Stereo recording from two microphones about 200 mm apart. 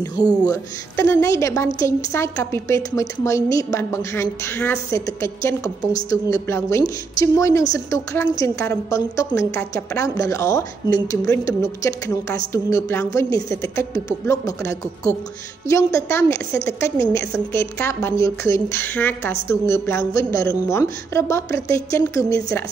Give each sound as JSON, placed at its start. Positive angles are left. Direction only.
{"t": 0.0, "sound": "a woman's voice", "side_deg": 20}